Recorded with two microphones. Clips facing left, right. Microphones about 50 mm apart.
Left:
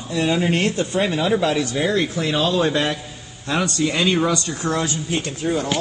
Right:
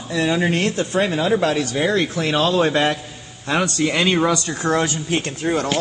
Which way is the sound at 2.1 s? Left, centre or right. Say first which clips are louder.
Right 2 dB; right.